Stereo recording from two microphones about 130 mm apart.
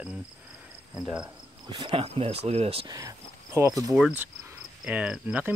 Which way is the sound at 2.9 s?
25° right (ahead or behind).